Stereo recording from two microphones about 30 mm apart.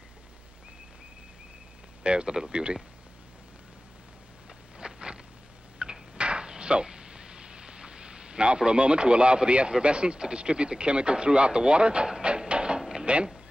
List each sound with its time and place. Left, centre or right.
2.0 s a man's voice: right
4.7 s a sound: right
8.5 s a man's voice: right